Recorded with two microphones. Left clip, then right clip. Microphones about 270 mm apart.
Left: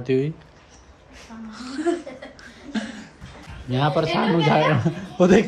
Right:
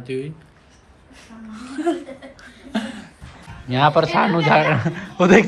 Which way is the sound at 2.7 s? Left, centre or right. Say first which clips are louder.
Right 4 dB; centre.